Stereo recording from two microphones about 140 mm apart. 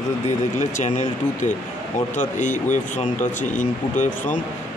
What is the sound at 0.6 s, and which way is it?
Speech, 60° left (ahead or behind).